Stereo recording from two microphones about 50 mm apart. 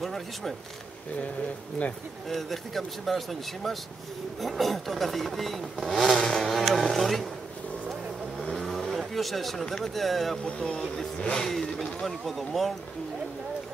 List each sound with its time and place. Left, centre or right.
0.0 s speech: centre
2.2 s speech: centre
8.4 s vehicle: centre
9.9 s speech: centre
10.4 s speech: left; by 12.7 s centre